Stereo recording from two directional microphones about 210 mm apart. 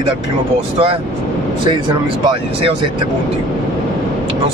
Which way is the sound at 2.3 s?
25° right (ahead or behind).